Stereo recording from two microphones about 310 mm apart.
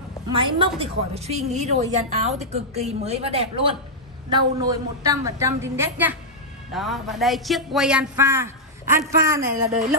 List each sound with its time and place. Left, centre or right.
0.3 s a woman's voice: centre
9.6 s a woman's voice: right